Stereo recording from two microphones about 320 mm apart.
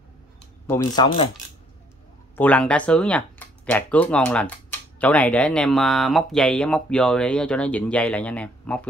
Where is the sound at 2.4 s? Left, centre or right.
Centre.